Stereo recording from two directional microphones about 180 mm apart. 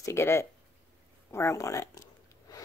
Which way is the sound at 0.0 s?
15° left (ahead or behind).